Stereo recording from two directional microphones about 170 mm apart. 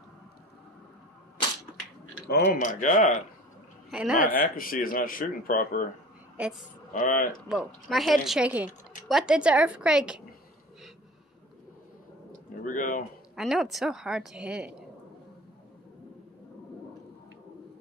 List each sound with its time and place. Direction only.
2.2 s speech: 75° left (ahead or behind)
2.6 s speech: 50° left (ahead or behind)
3.9 s a woman's voice: 5° right (ahead or behind)
4.4 s speech: 55° left (ahead or behind)
6.4 s a woman's voice: 5° right (ahead or behind)
6.9 s speech: 50° left (ahead or behind)
7.5 s a woman's voice: 5° right (ahead or behind)
12.6 s speech: 50° left (ahead or behind)
13.4 s a woman's voice: centre (ahead or behind)